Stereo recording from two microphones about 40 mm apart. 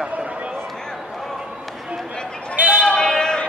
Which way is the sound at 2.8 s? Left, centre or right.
Left.